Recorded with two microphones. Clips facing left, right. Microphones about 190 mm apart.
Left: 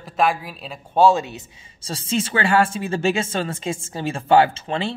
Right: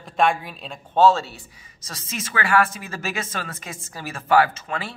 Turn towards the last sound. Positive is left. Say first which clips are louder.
# left 4 dB
turn(degrees=30)  # may be behind; listen again after turning